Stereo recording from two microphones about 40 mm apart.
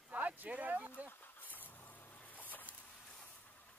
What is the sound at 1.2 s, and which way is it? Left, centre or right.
Vehicle, left.